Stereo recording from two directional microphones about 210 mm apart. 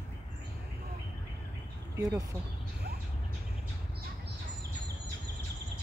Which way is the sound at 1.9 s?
15° right (ahead or behind).